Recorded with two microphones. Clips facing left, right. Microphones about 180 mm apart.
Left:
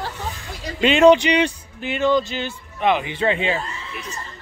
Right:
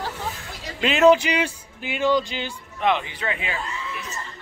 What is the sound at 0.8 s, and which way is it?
Speech, centre (ahead or behind).